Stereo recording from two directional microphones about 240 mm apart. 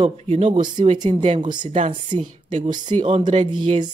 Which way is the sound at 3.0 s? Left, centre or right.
Right.